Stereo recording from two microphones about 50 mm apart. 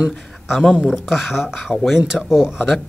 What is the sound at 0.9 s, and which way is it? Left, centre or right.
Speech, centre.